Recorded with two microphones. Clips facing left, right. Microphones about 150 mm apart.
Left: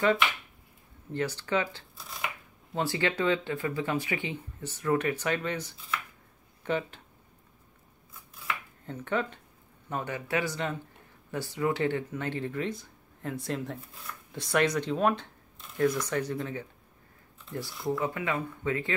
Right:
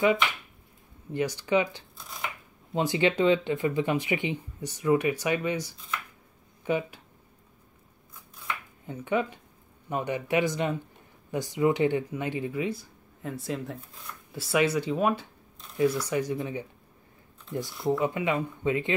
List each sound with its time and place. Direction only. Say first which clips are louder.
1.1 s speech: right 4 dB; 15° right (ahead or behind)
8.8 s speech: right 3 dB; 10° right (ahead or behind)